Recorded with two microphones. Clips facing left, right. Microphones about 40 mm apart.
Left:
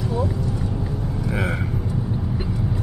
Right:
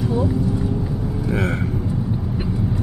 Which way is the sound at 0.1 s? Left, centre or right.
Centre.